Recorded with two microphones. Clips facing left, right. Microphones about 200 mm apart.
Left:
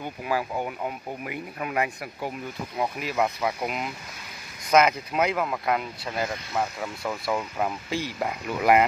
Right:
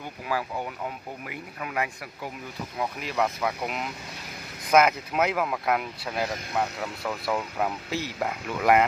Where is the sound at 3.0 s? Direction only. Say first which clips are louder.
Even; 5° left (ahead or behind).